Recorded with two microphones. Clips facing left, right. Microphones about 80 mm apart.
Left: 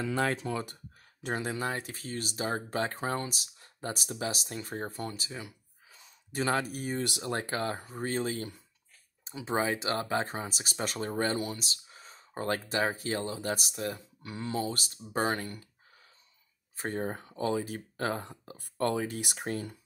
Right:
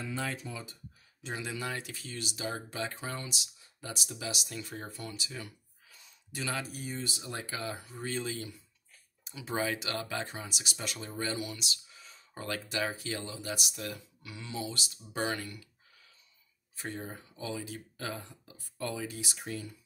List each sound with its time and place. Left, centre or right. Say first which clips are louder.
0.0 s speech: left 7 dB; left
1.2 s speech: left 5 dB; left
5.3 s a sound: left 2 dB; left
6.3 s speech: left 7 dB; left
9.2 s speech: left 3 dB; left
16.7 s speech: left 7 dB; left